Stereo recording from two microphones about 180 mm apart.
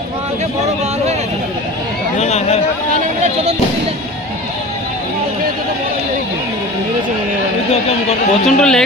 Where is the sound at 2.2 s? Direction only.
35° left (ahead or behind).